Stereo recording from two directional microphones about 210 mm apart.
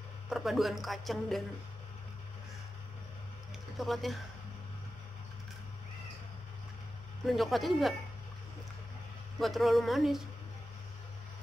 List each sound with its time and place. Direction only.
0.3 s speech: centre (ahead or behind)
3.7 s speech: centre (ahead or behind)
7.2 s speech: centre (ahead or behind)
9.4 s speech: centre (ahead or behind)